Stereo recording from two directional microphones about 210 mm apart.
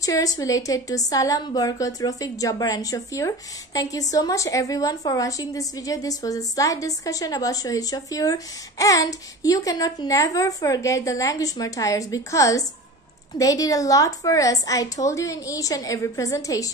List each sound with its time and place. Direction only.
0.0 s a woman's voice: 15° left (ahead or behind)